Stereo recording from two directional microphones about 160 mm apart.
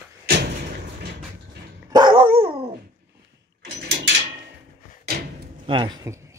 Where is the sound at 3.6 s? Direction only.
90° right.